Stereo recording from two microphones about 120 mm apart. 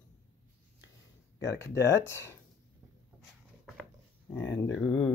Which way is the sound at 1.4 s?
25° left (ahead or behind).